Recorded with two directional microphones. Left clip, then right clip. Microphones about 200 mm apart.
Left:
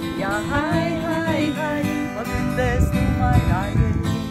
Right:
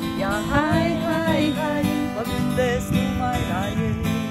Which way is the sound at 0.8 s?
55° right (ahead or behind).